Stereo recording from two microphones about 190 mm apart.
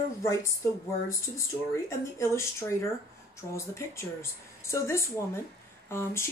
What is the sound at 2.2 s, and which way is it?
Speech, 15° left (ahead or behind).